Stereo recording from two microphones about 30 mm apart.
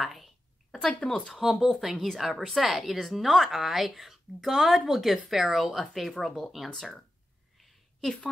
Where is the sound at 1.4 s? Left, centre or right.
Centre.